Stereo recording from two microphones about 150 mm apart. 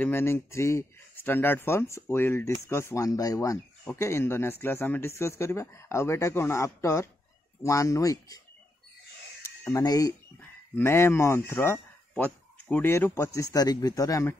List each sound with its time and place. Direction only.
0.0 s speech: 15° left (ahead or behind)
9.8 s speech: 25° left (ahead or behind)